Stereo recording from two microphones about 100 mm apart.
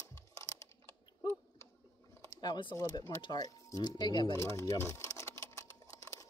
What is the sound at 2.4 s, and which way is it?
Speech, 50° left (ahead or behind).